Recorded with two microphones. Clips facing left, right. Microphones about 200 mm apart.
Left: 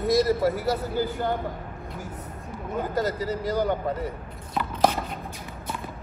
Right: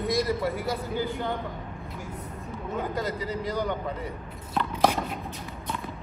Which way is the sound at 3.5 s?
40° left (ahead or behind).